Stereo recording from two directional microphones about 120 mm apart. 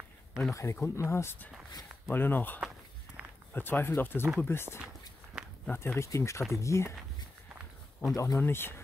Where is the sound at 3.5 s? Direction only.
15° left (ahead or behind).